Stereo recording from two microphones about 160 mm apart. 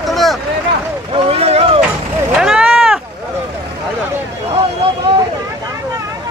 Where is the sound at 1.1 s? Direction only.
35° right (ahead or behind).